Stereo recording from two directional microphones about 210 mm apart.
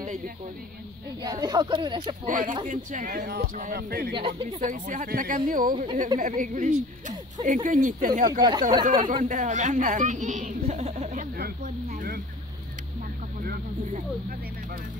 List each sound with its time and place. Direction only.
1.2 s speech: 20° right (ahead or behind)
2.2 s speech: 40° right (ahead or behind)
4.1 s speech: 25° right (ahead or behind)
8.3 s speech: 20° right (ahead or behind)
9.1 s a child's voice: 35° right (ahead or behind)
13.4 s a sound: 45° right (ahead or behind)